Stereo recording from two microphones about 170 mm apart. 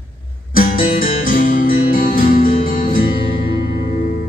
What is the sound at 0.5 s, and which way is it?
Music, 55° left (ahead or behind).